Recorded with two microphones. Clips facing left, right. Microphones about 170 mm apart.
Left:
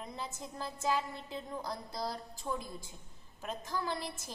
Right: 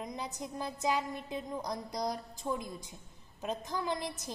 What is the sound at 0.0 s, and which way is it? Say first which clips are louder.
A woman's voice: right 3 dB; 15° right (ahead or behind).